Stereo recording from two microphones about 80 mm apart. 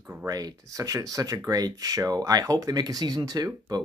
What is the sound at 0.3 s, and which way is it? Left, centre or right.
Speech, right.